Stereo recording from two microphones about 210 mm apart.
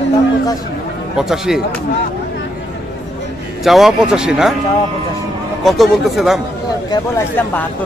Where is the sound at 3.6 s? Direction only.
Centre (ahead or behind).